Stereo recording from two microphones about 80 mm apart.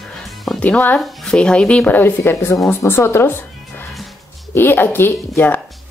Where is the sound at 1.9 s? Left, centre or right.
Left.